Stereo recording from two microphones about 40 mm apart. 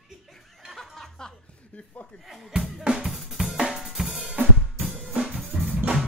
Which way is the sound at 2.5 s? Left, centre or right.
Centre.